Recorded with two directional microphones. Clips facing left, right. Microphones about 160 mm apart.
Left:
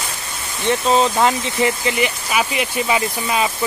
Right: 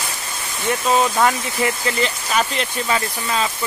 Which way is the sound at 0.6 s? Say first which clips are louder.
Left 2 dB; 25° left (ahead or behind).